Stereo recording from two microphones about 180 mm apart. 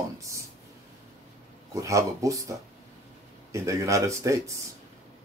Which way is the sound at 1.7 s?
15° right (ahead or behind).